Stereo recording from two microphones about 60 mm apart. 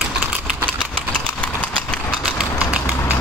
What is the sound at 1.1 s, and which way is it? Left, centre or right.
Horse, left.